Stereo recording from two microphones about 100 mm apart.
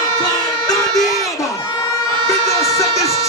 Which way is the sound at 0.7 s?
40° left (ahead or behind).